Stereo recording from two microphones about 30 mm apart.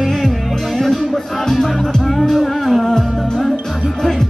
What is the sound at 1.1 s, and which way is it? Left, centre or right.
Music, centre.